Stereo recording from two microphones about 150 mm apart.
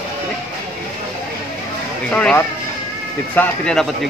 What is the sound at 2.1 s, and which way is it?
Speech, 5° left (ahead or behind).